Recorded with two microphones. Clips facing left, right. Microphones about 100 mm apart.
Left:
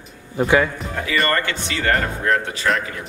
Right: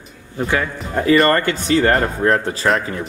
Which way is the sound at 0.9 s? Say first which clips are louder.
Right 9 dB; 40° right (ahead or behind).